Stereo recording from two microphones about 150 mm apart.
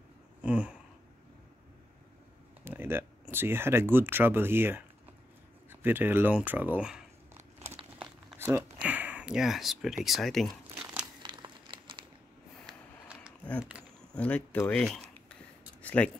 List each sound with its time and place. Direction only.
0.4 s a sound: 10° right (ahead or behind)
2.6 s speech: 15° right (ahead or behind)
7.7 s crumpling: 5° right (ahead or behind)
8.4 s speech: 15° right (ahead or behind); by 10.8 s centre (ahead or behind)
11.2 s crumpling: 30° right (ahead or behind)
14.1 s speech: 10° left (ahead or behind)
15.8 s a sound: 10° left (ahead or behind)